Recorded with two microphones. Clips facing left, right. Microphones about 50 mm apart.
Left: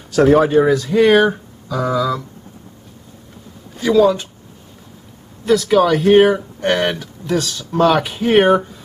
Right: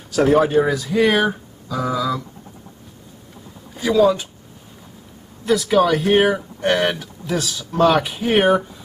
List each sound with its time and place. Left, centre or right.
0.1 s speech: centre
3.7 s speech: centre
5.4 s speech: centre